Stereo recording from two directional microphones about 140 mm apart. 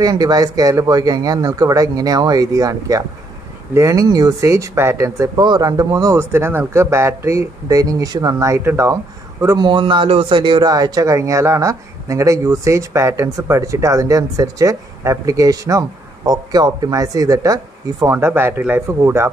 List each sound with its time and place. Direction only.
0.0 s speech: 25° right (ahead or behind)